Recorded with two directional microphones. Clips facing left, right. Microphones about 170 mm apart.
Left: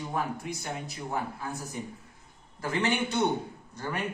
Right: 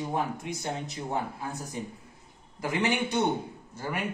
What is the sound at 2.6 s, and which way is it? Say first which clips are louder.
Speech: right 1 dB; 15° right (ahead or behind).